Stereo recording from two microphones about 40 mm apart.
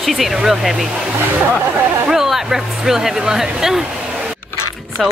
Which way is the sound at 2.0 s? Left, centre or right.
Centre.